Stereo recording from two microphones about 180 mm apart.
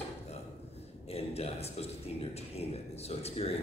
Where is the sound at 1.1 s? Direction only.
35° left (ahead or behind).